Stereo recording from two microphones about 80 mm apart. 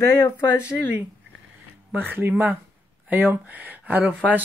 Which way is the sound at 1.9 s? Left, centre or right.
Right.